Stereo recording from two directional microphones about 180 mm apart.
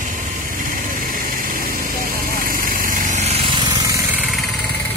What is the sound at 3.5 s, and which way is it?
Vehicle, 20° right (ahead or behind).